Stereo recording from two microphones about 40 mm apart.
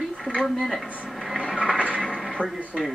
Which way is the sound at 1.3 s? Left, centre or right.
Centre.